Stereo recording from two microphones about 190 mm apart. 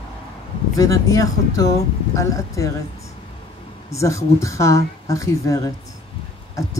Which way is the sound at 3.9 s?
15° left (ahead or behind).